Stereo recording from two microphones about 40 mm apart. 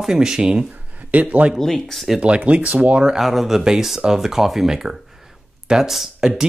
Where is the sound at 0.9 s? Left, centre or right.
Right.